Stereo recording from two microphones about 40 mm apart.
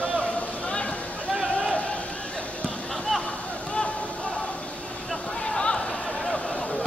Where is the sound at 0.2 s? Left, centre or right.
Left.